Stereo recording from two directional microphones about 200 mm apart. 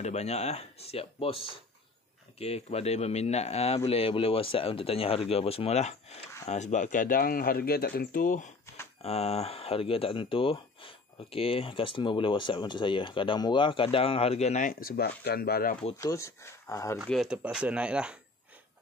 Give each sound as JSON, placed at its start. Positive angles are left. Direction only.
{"t": 0.0, "sound": "speech", "side_deg": 35}
{"t": 9.0, "sound": "speech", "side_deg": 30}
{"t": 16.0, "sound": "speech", "side_deg": 15}
{"t": 17.0, "sound": "speech", "side_deg": 0}